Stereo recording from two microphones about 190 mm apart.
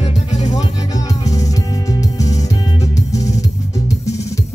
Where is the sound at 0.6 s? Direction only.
20° left (ahead or behind).